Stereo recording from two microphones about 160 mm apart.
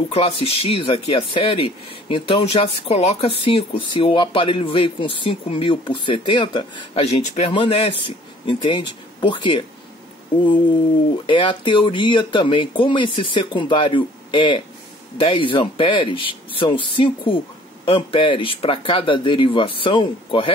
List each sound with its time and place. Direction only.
0.1 s speech: 35° left (ahead or behind)
11.2 s speech: 30° left (ahead or behind)